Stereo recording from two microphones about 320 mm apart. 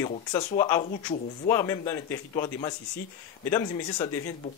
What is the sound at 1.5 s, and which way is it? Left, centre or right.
Speech, centre.